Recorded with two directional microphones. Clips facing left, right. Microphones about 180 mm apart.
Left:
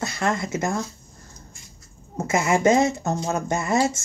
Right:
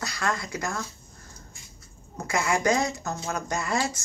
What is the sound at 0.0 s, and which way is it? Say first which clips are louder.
Speech: left 5 dB; 25° left (ahead or behind).